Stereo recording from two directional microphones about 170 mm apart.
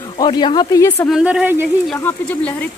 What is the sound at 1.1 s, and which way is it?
Speech, 5° right (ahead or behind).